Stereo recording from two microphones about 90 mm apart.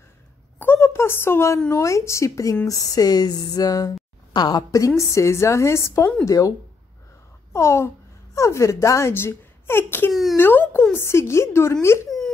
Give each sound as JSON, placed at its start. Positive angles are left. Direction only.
{"t": 0.6, "sound": "speech", "side_deg": 25}
{"t": 7.5, "sound": "speech", "side_deg": 30}